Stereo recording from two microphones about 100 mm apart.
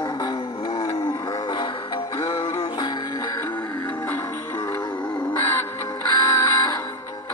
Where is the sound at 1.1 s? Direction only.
40° left (ahead or behind).